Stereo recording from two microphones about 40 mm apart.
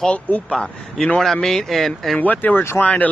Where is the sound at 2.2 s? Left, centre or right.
Left.